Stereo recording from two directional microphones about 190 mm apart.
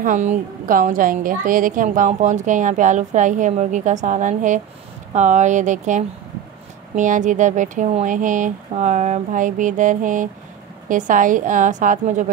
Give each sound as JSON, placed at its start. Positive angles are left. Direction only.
{"t": 0.0, "sound": "a woman's voice", "side_deg": -40}